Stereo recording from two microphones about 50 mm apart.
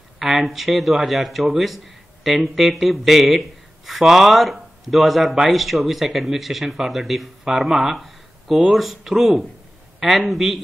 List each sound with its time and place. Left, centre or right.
0.2 s speech: centre